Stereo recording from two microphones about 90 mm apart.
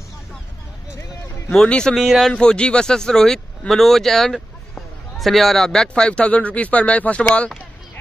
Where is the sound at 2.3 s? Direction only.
10° left (ahead or behind).